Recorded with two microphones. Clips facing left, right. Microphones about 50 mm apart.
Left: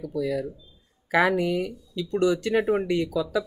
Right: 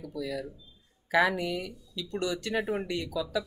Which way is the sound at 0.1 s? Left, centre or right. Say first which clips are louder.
Left 8 dB; left.